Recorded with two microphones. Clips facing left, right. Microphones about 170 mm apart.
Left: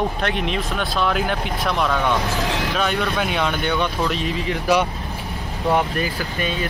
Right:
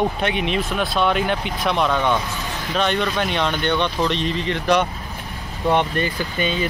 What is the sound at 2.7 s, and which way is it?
Speech, 5° left (ahead or behind).